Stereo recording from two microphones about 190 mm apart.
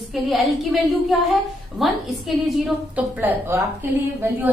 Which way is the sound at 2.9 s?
10° right (ahead or behind).